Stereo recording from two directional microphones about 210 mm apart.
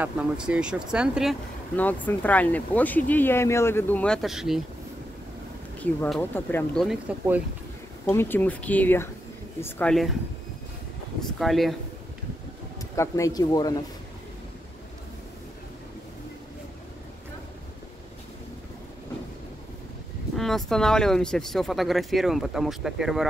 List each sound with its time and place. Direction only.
0.0 s speech: 5° right (ahead or behind)
1.8 s speech: 10° left (ahead or behind)
5.8 s speech: 5° left (ahead or behind)
8.1 s speech: 10° left (ahead or behind)
11.3 s speech: centre (ahead or behind)
12.9 s speech: 15° left (ahead or behind)
20.3 s speech: centre (ahead or behind)